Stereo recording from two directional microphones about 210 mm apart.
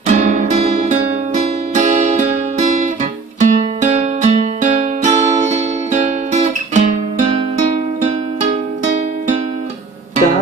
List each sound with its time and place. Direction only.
0.0 s music: 40° right (ahead or behind)